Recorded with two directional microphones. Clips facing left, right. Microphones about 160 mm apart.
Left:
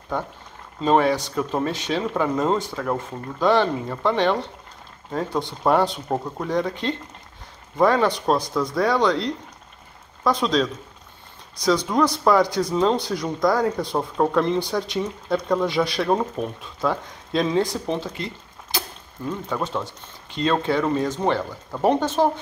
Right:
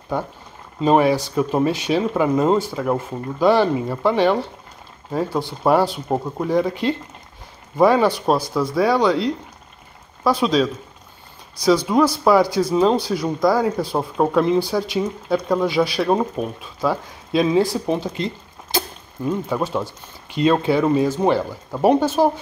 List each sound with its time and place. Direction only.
0.1 s speech: 10° right (ahead or behind)
18.1 s a sound: 25° right (ahead or behind)
19.2 s speech: 10° right (ahead or behind)